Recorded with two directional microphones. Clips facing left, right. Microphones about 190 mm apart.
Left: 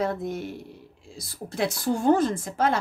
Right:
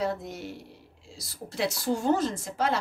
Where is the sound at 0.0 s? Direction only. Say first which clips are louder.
Left 3 dB; 50° left (ahead or behind).